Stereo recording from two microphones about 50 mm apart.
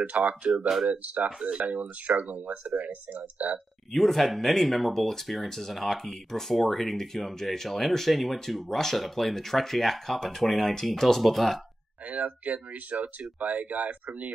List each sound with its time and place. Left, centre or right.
0.0 s speech: right
3.9 s speech: centre
12.1 s speech: right